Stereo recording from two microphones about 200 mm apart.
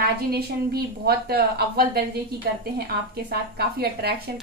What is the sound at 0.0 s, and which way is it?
A woman's voice, 50° right (ahead or behind).